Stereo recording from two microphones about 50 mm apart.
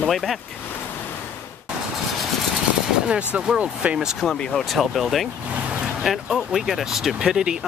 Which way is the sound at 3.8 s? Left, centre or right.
Right.